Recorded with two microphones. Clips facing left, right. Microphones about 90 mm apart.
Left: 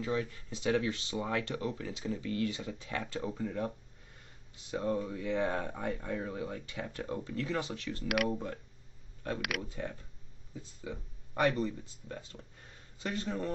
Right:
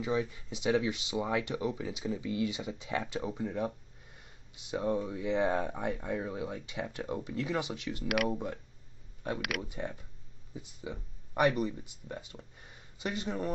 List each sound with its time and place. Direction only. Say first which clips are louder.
0.0 s speech: right 2 dB; 15° right (ahead or behind)
9.6 s speech: right 1 dB; 15° right (ahead or behind)